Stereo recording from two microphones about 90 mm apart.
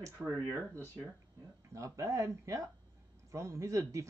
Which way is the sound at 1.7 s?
35° right (ahead or behind).